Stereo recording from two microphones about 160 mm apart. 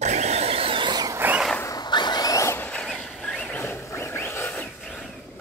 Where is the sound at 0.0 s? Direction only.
45° right (ahead or behind); by 1.2 s 25° right (ahead or behind).